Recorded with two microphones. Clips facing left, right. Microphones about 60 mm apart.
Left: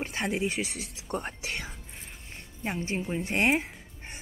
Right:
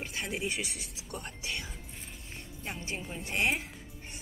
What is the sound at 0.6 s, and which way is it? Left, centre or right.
Speech, centre.